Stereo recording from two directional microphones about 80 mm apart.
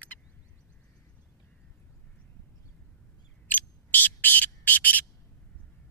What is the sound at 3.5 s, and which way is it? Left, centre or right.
Bird, left.